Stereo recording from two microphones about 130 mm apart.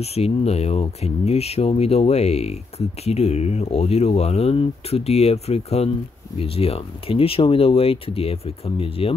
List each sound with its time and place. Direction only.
0.0 s speech: 50° left (ahead or behind)